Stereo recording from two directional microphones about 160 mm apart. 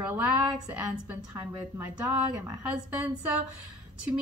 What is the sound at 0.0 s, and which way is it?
Speech, 10° right (ahead or behind).